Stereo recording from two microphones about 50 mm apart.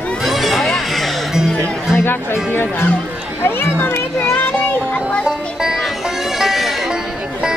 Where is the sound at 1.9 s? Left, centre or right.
Left.